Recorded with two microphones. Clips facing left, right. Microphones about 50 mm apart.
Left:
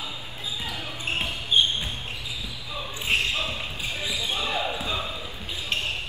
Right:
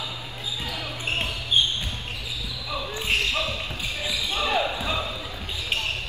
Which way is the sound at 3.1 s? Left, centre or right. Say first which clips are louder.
Even; left.